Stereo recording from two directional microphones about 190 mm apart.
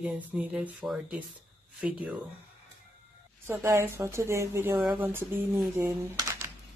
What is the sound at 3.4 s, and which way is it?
Speech, 15° right (ahead or behind).